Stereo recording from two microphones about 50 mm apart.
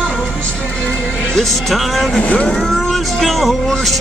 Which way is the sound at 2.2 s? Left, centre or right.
Left.